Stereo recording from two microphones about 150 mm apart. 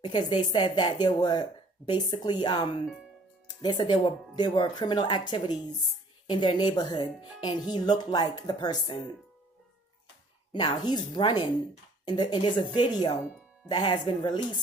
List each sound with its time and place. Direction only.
0.0 s a woman's voice: 30° left (ahead or behind)
10.5 s a woman's voice: 30° left (ahead or behind)